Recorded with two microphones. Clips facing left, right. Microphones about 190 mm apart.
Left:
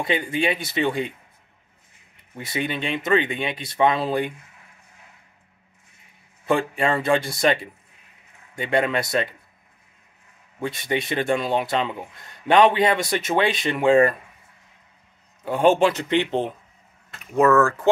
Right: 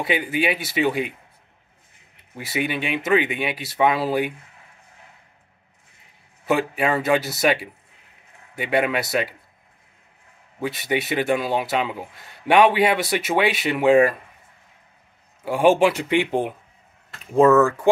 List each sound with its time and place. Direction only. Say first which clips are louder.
0.0 s speech: right 1 dB; 5° right (ahead or behind)
2.3 s speech: right 2 dB; 10° right (ahead or behind)
6.4 s speech: even; 5° right (ahead or behind)
10.6 s speech: right 1 dB; 5° right (ahead or behind)
15.4 s speech: right 1 dB; 10° right (ahead or behind)
17.3 s speech: right 3 dB; 25° right (ahead or behind)